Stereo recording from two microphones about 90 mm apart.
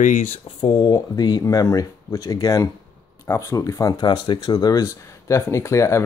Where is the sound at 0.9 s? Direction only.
50° left (ahead or behind).